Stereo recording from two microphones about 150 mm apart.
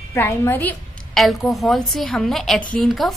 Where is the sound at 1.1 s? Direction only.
Centre (ahead or behind).